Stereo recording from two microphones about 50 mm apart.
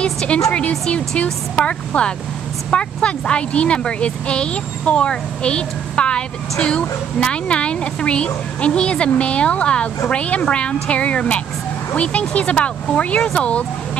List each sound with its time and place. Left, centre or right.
0.0 s speech: left